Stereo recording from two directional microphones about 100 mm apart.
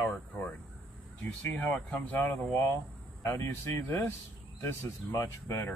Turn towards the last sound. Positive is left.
turn(degrees=35)  # may be behind; listen again after turning